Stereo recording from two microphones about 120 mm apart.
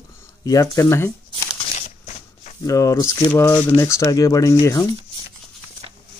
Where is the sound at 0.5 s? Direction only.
30° left (ahead or behind).